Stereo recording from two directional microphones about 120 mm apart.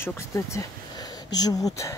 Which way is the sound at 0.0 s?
25° left (ahead or behind).